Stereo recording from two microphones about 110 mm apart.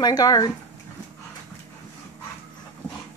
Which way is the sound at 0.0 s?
35° left (ahead or behind).